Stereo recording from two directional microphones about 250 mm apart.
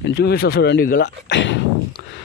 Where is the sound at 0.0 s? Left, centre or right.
Left.